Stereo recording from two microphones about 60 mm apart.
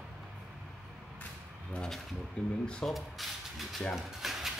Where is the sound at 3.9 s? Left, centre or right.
Centre.